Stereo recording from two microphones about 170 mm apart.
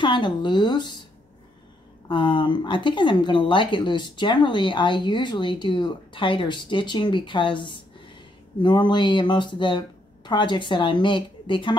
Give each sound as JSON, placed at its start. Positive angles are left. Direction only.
{"t": 0.0, "sound": "speech", "side_deg": 30}
{"t": 2.0, "sound": "speech", "side_deg": 30}